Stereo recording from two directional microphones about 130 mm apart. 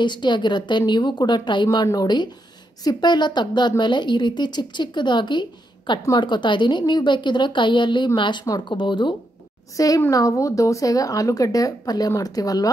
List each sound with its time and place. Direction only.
0.0 s a woman's voice: 35° left (ahead or behind)
9.8 s speech: 25° left (ahead or behind)